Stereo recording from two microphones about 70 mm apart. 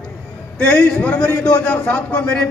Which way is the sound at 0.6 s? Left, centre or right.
Centre.